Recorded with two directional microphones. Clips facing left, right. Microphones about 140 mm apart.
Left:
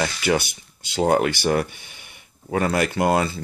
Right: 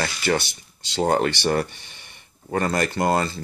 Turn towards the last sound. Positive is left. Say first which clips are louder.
# left 1 dB
turn(degrees=5)  # may be behind; listen again after turning